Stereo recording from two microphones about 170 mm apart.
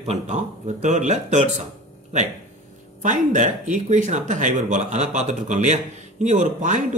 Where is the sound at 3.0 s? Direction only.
45° right (ahead or behind).